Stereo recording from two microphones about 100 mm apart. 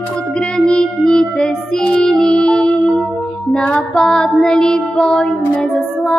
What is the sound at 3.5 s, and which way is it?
Child singing, 10° left (ahead or behind).